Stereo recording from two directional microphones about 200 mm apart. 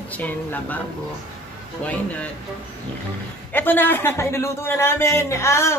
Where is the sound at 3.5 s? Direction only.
10° left (ahead or behind).